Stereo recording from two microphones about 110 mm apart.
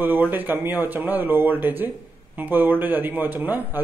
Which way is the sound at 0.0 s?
15° right (ahead or behind).